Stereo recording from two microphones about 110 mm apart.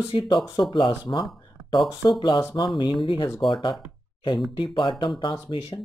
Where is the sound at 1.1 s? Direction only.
35° left (ahead or behind).